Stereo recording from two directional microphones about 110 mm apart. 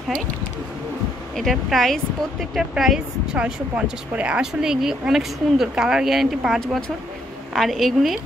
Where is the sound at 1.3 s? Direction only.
Centre (ahead or behind).